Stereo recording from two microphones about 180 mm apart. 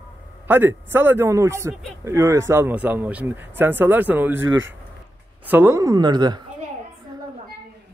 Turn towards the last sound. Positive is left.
turn(degrees=-25)  # may be behind; listen again after turning